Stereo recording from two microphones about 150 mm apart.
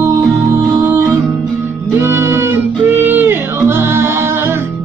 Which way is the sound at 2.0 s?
15° right (ahead or behind).